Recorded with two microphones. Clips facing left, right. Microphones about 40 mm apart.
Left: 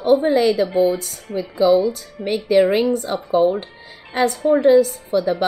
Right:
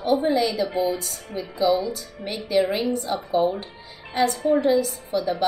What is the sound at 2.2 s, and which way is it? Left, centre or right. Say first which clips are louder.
A woman's voice: left 7 dB; left.